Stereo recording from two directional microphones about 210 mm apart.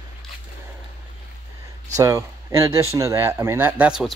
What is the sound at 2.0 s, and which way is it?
Speech, 15° right (ahead or behind).